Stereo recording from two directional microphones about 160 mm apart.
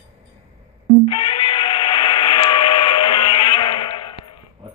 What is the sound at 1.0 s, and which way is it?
Tools, 30° left (ahead or behind).